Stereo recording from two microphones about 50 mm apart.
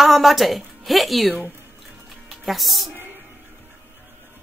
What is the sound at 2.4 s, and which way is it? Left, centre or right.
Speech, centre.